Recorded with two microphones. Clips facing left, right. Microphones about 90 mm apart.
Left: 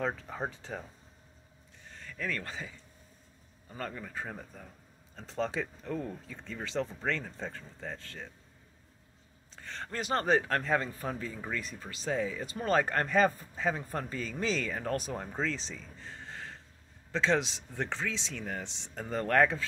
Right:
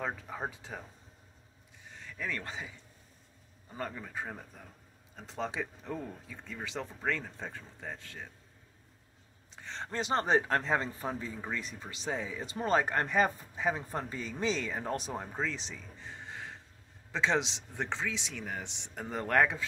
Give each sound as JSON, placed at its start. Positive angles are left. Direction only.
{"t": 0.0, "sound": "speech", "side_deg": -5}
{"t": 1.9, "sound": "speech", "side_deg": -15}
{"t": 3.7, "sound": "speech", "side_deg": -10}
{"t": 9.5, "sound": "speech", "side_deg": -20}
{"t": 15.1, "sound": "speech", "side_deg": -10}